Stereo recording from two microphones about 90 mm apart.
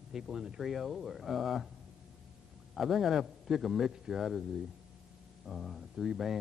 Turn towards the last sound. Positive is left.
turn(degrees=-5)  # may be behind; listen again after turning